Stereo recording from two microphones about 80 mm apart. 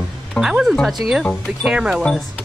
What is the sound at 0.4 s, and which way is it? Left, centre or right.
Speech, centre.